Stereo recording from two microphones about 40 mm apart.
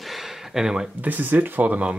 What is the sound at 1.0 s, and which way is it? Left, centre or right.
Speech, right.